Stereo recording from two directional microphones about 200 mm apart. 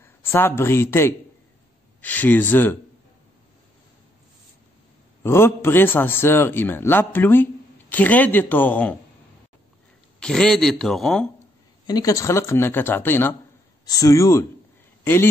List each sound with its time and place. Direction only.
0.0 s a man's voice: 10° left (ahead or behind)
5.2 s a man's voice: 10° left (ahead or behind)
10.2 s speech: 5° left (ahead or behind)
11.8 s a man's voice: 20° left (ahead or behind)